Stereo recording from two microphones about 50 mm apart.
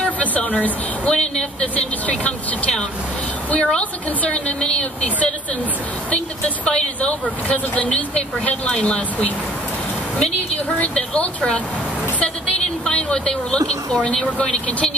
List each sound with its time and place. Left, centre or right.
0.2 s speech: left
10.8 s a woman's voice: left